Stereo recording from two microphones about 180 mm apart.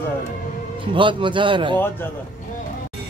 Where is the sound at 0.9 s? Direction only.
25° right (ahead or behind).